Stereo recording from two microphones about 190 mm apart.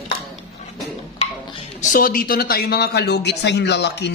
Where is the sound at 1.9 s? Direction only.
50° left (ahead or behind).